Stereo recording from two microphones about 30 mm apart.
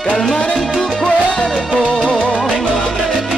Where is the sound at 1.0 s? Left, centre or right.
Left.